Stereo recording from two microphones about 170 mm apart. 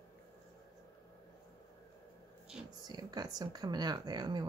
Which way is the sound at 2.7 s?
25° right (ahead or behind).